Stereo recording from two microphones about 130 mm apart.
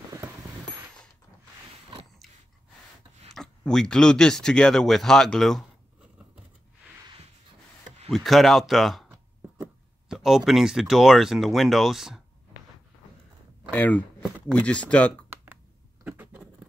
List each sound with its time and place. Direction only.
3.3 s speech: 5° left (ahead or behind)
8.1 s speech: centre (ahead or behind)
13.7 s speech: 10° left (ahead or behind)
16.0 s patter: 15° right (ahead or behind)